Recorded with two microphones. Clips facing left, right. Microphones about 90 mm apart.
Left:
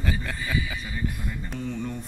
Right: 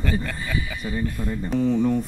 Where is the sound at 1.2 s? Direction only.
35° right (ahead or behind).